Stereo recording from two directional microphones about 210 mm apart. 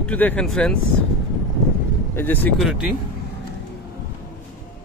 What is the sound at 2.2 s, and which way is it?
Speech, 10° left (ahead or behind).